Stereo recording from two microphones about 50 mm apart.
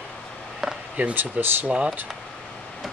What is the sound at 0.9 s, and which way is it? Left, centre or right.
Speech, right.